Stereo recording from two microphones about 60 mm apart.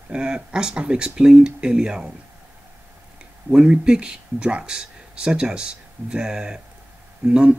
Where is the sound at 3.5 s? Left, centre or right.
Centre.